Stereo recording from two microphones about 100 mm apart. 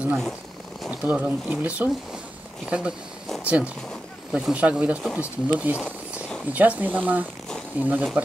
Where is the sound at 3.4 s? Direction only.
15° right (ahead or behind).